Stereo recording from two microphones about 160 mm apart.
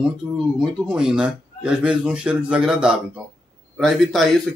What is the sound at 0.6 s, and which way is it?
Speech, 5° right (ahead or behind).